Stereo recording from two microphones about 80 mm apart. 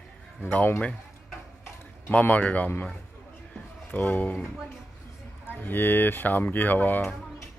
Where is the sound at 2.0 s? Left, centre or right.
Left.